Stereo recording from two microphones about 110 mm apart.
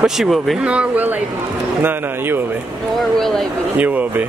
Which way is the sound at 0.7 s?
15° right (ahead or behind).